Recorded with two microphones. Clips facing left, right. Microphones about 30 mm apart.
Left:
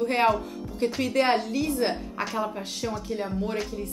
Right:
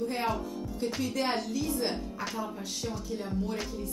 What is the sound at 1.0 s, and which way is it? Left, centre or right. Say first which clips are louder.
A woman's voice: left 9 dB; left.